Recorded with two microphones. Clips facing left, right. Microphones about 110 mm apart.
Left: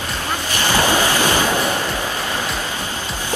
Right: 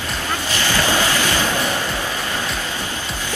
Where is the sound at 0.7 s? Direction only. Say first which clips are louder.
Left 3 dB; 15° left (ahead or behind).